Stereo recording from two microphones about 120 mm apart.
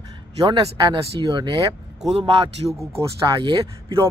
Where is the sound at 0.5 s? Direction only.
40° right (ahead or behind).